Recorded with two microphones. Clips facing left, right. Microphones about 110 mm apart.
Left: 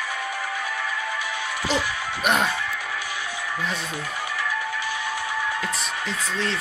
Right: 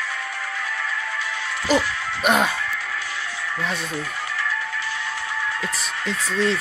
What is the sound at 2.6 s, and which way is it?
Music, 15° left (ahead or behind).